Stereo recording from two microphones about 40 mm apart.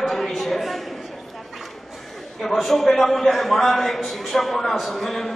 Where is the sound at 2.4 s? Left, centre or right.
Centre.